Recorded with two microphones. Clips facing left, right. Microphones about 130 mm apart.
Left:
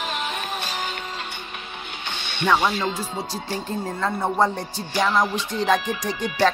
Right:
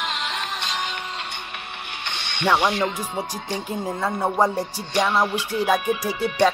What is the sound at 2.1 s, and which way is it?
Music, 70° right (ahead or behind).